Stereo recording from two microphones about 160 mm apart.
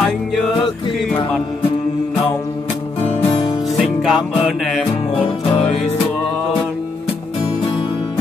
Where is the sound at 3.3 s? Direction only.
40° left (ahead or behind).